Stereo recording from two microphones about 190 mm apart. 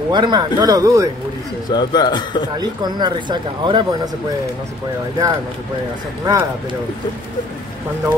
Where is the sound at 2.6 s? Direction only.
20° right (ahead or behind).